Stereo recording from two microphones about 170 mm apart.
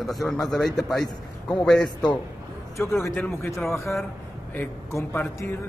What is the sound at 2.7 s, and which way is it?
Speech, 15° left (ahead or behind).